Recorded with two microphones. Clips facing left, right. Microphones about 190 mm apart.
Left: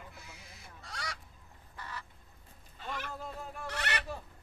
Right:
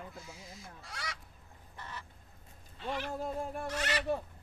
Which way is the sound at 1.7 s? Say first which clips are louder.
Left 1 dB; 25° right (ahead or behind).